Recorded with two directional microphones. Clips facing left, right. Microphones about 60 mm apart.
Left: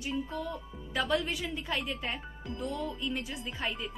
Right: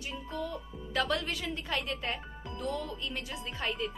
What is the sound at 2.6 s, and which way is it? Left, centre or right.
Speech, centre.